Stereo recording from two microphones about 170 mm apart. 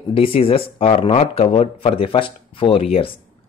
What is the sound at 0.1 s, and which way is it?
Speech, 35° left (ahead or behind).